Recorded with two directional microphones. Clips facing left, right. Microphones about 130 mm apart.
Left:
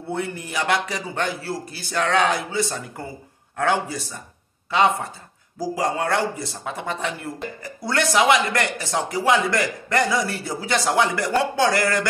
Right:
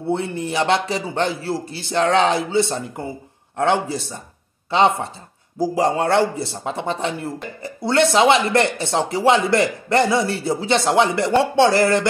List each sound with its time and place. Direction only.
0.1 s a man's voice: 25° right (ahead or behind)